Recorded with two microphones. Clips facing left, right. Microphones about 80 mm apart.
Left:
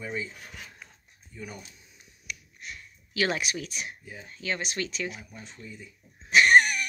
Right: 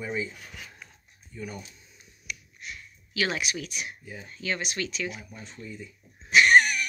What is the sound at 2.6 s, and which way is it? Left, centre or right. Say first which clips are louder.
Speech: right 1 dB; left.